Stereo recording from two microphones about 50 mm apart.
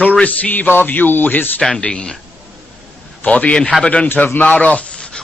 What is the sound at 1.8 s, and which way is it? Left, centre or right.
Speech, centre.